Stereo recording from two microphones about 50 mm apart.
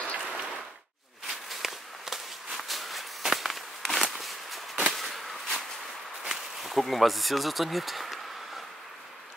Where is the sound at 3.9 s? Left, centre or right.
Centre.